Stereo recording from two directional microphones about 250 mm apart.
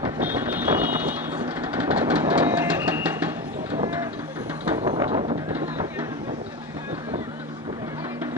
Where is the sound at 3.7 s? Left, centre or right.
Centre.